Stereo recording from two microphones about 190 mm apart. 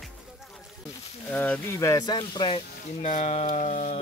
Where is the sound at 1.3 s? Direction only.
10° left (ahead or behind); by 2.6 s 25° left (ahead or behind).